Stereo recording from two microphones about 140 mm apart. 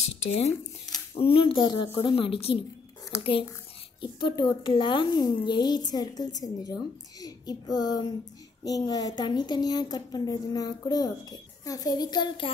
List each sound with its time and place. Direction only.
0.3 s a child's voice: 50° left (ahead or behind); by 12.4 s 30° left (ahead or behind)